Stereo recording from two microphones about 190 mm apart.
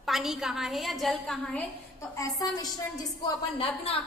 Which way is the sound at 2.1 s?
20° left (ahead or behind).